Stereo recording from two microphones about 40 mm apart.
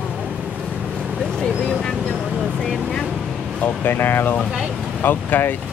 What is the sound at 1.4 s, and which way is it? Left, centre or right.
Vehicle, centre.